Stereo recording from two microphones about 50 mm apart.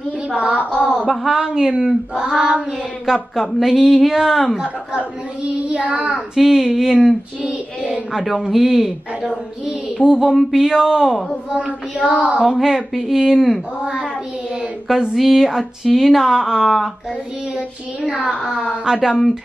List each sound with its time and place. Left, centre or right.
0.3 s child singing: right
0.7 s mantra: left
1.2 s a woman's voice: centre
2.1 s child singing: centre
3.1 s speech: centre
5.4 s child singing: right
6.3 s a woman's voice: centre
7.4 s child singing: centre
8.3 s a woman's voice: centre
11.5 s child singing: right
12.4 s a woman's voice: centre
14.9 s speech: centre
18.9 s a woman's voice: centre